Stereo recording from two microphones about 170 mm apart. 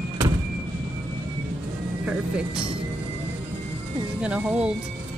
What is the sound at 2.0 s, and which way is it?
Speech, 5° right (ahead or behind).